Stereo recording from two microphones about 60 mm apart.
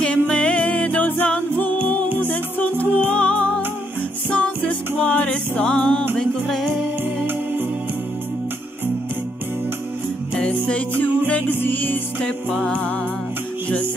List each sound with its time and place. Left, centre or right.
0.0 s music: centre
1.2 s a capella: left
2.1 s music: left; by 6.7 s centre
10.3 s music: centre
12.2 s music: centre